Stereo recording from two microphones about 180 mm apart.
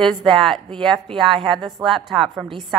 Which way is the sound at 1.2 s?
30° right (ahead or behind).